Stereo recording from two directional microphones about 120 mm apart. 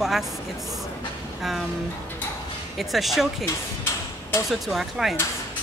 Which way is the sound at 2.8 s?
Centre (ahead or behind).